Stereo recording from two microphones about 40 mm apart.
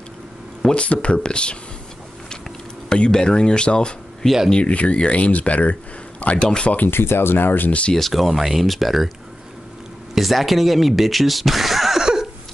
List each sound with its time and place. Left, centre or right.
0.7 s speech: left
2.9 s speech: centre; by 6.4 s left
6.9 s speech: left
7.9 s speech: centre
10.1 s speech: centre
12.0 s a sound: centre